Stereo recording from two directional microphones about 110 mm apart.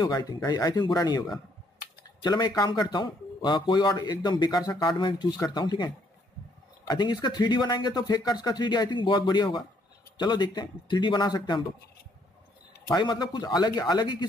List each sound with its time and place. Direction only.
0.0 s a man's voice: 35° left (ahead or behind)
6.9 s a man's voice: 40° left (ahead or behind)
12.9 s speech: 40° left (ahead or behind)